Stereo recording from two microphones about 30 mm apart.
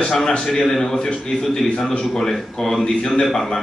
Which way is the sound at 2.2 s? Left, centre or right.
Centre.